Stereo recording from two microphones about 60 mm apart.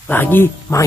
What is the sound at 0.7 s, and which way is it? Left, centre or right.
Speech, left.